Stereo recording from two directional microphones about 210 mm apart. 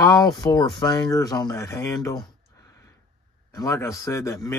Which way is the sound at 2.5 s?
15° left (ahead or behind).